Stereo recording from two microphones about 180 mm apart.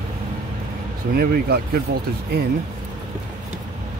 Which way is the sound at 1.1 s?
55° right (ahead or behind).